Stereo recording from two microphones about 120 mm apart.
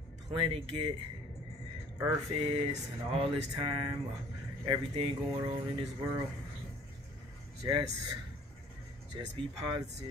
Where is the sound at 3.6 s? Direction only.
45° right (ahead or behind).